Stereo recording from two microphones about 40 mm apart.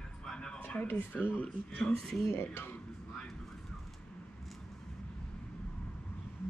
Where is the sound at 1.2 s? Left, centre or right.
Left.